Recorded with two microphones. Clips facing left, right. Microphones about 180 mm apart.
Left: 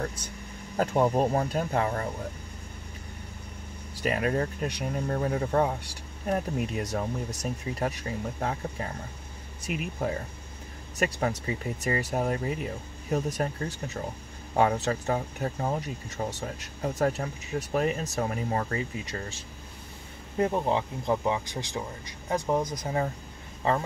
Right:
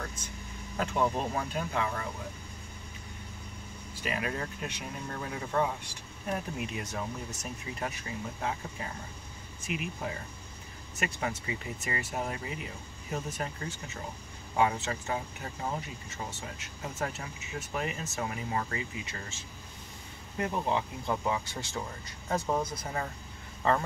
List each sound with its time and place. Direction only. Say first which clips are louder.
0.0 s vehicle: left 7 dB; 35° left (ahead or behind)
0.7 s speech: left 6 dB; 40° left (ahead or behind)
3.9 s speech: left 7 dB; 40° left (ahead or behind)
14.6 s speech: left 4 dB; 50° left (ahead or behind)
20.3 s speech: left 5 dB; 30° left (ahead or behind); by 22.8 s 15° left (ahead or behind)